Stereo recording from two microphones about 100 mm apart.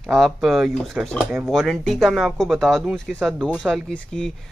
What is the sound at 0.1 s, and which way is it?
Speech, centre (ahead or behind).